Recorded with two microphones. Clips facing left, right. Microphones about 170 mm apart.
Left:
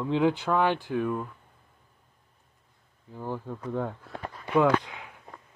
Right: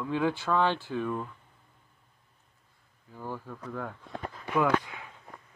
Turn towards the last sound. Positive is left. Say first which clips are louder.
# left 1 dB
turn(degrees=20)  # may be behind; listen again after turning